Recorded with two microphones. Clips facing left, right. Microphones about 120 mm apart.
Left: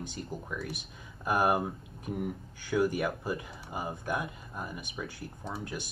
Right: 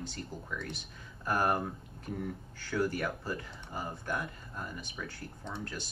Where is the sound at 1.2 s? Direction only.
15° left (ahead or behind).